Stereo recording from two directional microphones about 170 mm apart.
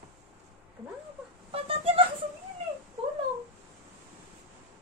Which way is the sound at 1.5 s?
35° right (ahead or behind).